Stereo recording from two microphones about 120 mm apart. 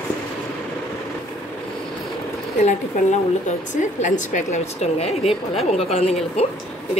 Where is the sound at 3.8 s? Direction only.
85° left; by 6.5 s 60° left (ahead or behind).